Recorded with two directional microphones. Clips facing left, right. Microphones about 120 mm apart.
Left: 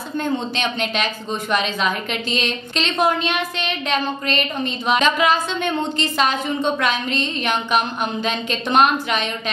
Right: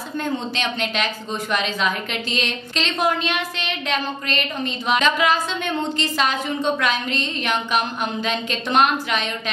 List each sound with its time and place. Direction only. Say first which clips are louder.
0.2 s a woman's voice: left 2 dB; 25° left (ahead or behind)
2.3 s a woman's voice: left 2 dB; 25° left (ahead or behind)